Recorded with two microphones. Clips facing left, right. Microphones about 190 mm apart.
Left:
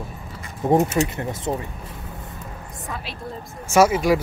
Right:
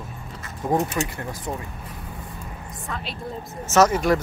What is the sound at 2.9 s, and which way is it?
Speech, 5° left (ahead or behind).